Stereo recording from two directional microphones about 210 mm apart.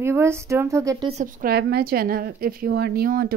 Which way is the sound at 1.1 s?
35° right (ahead or behind).